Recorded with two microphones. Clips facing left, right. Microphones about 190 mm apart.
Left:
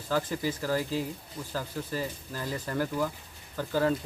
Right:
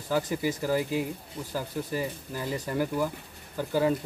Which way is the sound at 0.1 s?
15° right (ahead or behind).